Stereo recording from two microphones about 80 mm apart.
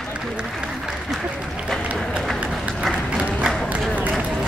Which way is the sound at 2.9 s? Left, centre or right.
Centre.